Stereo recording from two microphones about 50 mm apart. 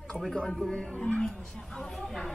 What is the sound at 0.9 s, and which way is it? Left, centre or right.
Speech, left.